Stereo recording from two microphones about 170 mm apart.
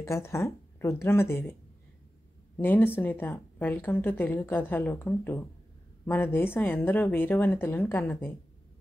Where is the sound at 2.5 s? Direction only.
10° left (ahead or behind).